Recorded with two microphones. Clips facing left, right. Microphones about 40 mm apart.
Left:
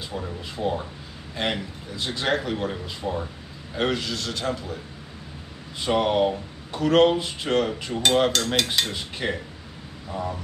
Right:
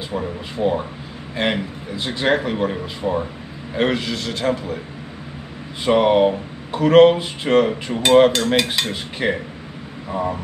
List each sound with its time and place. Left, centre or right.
0.1 s speech: right
5.8 s speech: centre